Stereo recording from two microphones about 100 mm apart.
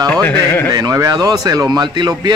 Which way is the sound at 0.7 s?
35° right (ahead or behind).